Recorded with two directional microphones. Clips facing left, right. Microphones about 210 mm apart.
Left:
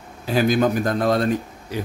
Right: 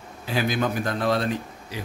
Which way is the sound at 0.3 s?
45° left (ahead or behind).